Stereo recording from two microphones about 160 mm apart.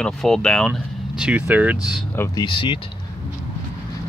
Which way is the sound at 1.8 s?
20° left (ahead or behind).